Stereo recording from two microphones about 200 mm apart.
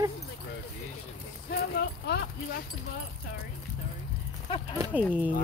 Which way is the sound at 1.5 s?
55° left (ahead or behind).